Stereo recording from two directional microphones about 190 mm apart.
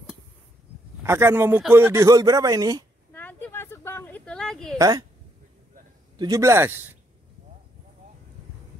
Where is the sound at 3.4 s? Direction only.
10° left (ahead or behind).